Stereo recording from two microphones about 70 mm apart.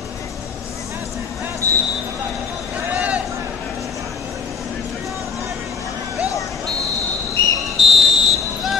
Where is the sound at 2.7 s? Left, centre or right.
Centre.